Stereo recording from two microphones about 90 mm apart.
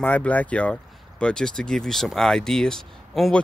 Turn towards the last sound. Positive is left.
turn(degrees=5)  # may be behind; listen again after turning